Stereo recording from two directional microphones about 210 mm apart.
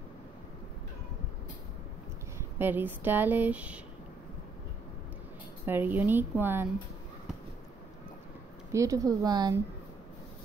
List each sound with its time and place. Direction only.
2.6 s speech: 10° right (ahead or behind)
5.7 s speech: 10° right (ahead or behind)
8.7 s speech: 15° right (ahead or behind)